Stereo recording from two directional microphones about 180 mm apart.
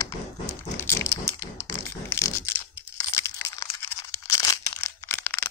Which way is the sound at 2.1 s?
15° left (ahead or behind).